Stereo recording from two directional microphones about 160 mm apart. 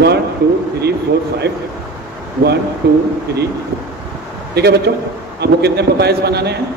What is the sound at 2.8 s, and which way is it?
Speech, 90° right.